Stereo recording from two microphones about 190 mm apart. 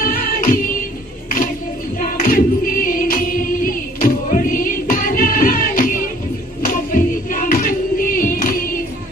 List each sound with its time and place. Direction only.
0.0 s music: 50° left (ahead or behind)
2.0 s choir: 45° left (ahead or behind)
6.6 s music: 45° left (ahead or behind)